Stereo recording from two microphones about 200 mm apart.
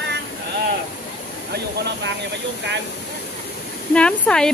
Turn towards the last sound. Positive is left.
turn(degrees=5)  # may be behind; listen again after turning